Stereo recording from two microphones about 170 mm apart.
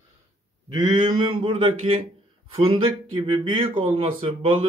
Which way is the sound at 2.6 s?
30° right (ahead or behind).